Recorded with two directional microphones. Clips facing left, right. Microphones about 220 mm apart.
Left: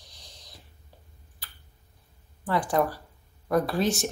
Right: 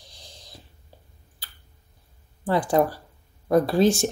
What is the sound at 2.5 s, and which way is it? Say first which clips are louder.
Speech: right 4 dB; 30° right (ahead or behind).